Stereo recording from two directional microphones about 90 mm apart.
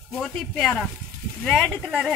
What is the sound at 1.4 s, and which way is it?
Speech, 5° left (ahead or behind).